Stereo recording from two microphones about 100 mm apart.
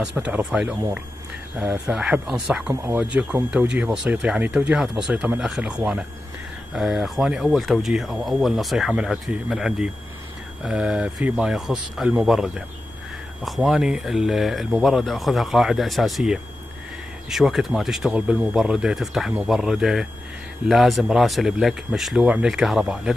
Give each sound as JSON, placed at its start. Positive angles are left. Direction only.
{"t": 0.0, "sound": "speech", "side_deg": -10}
{"t": 2.7, "sound": "speech", "side_deg": -20}